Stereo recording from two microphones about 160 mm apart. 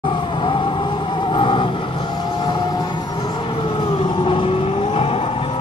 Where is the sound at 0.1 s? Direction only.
30° left (ahead or behind).